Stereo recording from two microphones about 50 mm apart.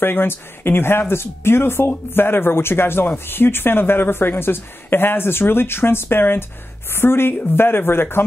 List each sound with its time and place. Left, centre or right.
0.0 s speech: left